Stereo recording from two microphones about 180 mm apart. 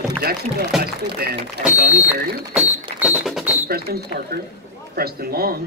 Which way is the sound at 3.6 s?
60° right (ahead or behind).